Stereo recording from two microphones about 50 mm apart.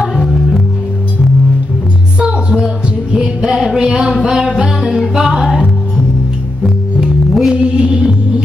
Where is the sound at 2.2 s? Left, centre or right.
Centre.